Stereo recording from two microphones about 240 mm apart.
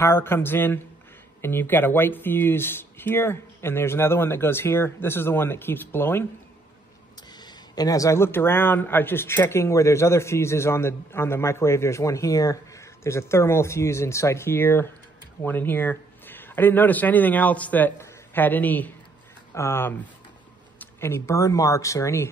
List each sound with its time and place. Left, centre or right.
0.0 s speech: centre
7.3 s speech: centre